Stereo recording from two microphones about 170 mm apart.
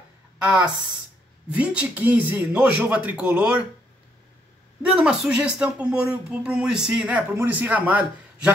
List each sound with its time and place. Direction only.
0.4 s speech: 5° right (ahead or behind)
4.8 s speech: 5° right (ahead or behind)